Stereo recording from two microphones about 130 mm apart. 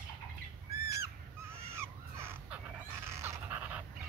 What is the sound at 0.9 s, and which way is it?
Crow, 20° right (ahead or behind).